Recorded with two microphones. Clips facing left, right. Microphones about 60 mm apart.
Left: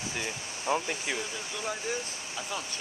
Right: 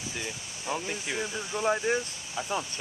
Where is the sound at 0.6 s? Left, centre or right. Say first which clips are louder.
Left 3 dB; centre.